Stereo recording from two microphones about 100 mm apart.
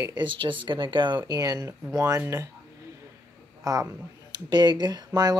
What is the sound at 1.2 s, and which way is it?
Speech, 40° right (ahead or behind).